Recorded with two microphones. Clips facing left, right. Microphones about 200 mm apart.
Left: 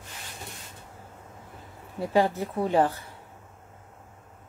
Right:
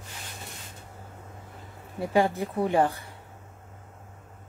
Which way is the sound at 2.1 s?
15° right (ahead or behind).